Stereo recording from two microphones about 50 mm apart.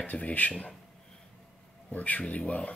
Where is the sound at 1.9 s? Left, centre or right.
Left.